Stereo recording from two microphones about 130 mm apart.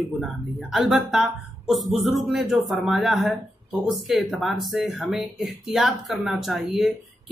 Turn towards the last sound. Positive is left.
turn(degrees=0)  # may be behind; listen again after turning